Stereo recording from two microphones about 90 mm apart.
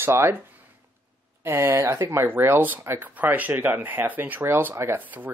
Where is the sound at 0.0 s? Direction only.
25° right (ahead or behind).